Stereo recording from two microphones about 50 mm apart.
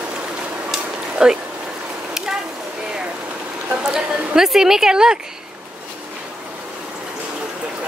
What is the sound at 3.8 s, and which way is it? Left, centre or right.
A woman's voice, centre.